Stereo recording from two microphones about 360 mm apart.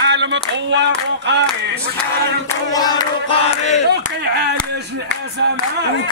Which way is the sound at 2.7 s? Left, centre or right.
Centre.